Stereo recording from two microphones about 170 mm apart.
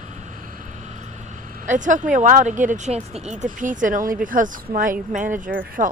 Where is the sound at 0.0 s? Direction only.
45° right (ahead or behind).